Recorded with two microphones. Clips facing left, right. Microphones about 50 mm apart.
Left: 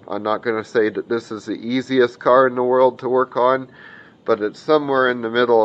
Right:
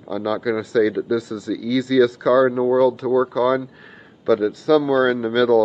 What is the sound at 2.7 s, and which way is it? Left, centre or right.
Speech, left.